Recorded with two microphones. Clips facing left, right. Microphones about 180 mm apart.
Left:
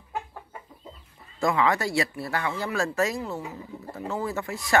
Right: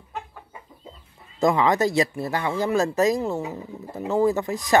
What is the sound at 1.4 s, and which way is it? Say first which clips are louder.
Speech: right 4 dB; 20° right (ahead or behind).